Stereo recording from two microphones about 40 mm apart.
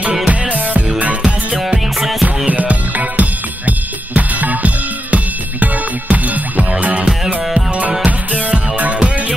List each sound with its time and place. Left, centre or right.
0.3 s music: right
2.0 s music: centre
2.2 s music: right